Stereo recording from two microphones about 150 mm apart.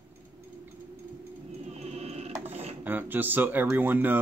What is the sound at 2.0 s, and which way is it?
Music, 45° right (ahead or behind).